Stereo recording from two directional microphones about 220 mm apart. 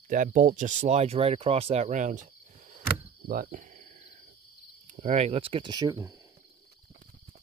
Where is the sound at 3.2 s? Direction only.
40° right (ahead or behind).